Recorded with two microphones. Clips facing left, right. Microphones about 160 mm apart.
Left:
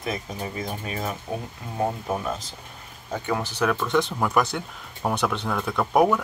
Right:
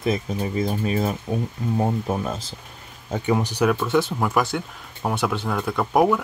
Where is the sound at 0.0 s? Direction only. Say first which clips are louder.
Right 6 dB; 30° right (ahead or behind).